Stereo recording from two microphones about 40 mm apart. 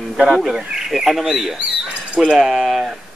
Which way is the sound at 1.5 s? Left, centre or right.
Right.